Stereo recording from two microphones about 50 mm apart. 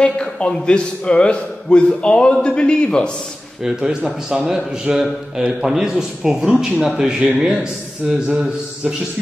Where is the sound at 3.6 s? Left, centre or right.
Centre.